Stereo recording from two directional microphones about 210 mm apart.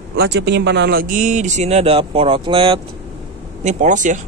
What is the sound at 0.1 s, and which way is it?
Speech, 55° right (ahead or behind).